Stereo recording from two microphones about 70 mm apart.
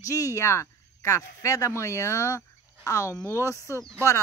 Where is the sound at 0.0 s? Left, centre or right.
Left.